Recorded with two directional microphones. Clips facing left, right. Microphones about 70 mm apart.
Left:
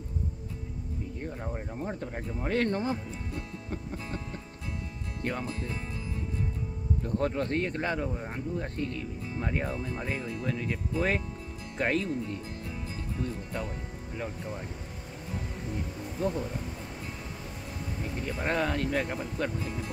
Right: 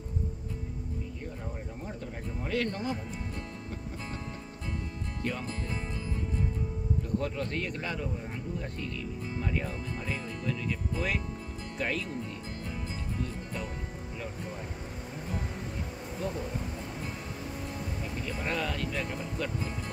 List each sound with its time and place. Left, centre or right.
1.2 s speech: left
7.0 s speech: left
16.2 s speech: left
18.2 s speech: left